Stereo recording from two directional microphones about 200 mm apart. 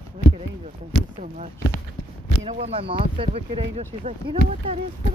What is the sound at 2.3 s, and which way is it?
Speech, 30° right (ahead or behind).